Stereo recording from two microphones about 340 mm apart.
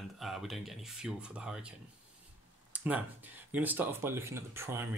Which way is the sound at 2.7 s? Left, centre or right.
Centre.